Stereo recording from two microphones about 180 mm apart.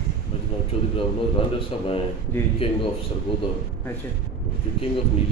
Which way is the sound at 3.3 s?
30° left (ahead or behind).